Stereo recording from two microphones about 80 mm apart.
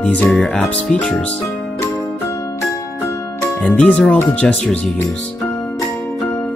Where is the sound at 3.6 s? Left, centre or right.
Centre.